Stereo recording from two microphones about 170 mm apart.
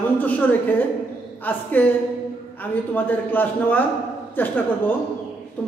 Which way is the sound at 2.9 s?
10° left (ahead or behind).